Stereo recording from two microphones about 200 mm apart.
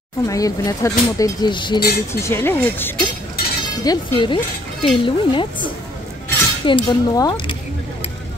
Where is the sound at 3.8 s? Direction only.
20° left (ahead or behind).